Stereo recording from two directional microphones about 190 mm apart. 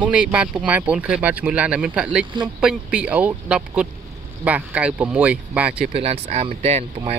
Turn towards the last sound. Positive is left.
turn(degrees=-35)  # may be behind; listen again after turning